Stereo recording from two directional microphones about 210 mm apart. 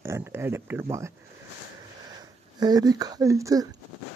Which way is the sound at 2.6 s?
20° right (ahead or behind).